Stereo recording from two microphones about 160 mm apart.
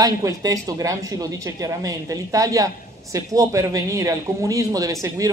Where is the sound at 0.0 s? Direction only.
20° right (ahead or behind).